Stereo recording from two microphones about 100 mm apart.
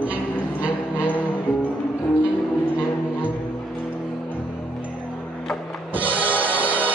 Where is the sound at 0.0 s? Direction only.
15° right (ahead or behind).